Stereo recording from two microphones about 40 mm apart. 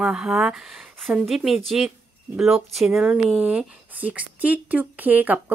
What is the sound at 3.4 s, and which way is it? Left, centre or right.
Speech, right.